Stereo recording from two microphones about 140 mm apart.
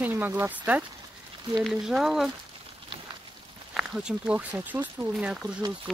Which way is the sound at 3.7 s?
5° right (ahead or behind).